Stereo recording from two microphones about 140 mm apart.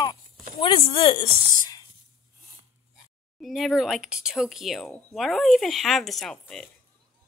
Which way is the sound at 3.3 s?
Centre (ahead or behind).